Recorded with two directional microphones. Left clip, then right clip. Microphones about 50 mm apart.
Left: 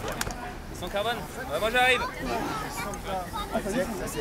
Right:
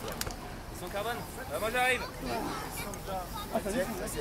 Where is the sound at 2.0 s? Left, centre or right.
Left.